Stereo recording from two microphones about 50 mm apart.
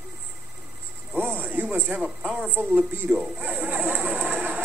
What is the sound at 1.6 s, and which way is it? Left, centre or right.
Speech, right.